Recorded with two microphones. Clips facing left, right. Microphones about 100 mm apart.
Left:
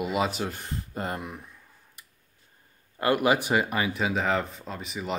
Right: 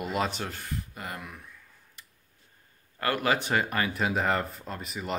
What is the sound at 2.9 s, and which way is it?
Speech, 20° left (ahead or behind).